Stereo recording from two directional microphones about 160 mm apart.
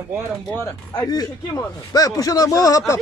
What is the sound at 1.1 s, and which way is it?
Speech, 25° left (ahead or behind).